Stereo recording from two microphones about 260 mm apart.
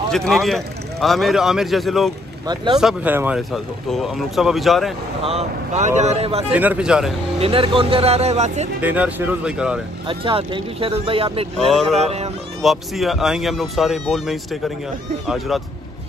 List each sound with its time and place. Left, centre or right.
0.1 s speech: centre
2.4 s speech: centre
2.8 s speech: centre
5.2 s speech: right
6.5 s speech: centre
7.3 s speech: right
8.8 s speech: centre
10.0 s speech: centre
12.6 s speech: centre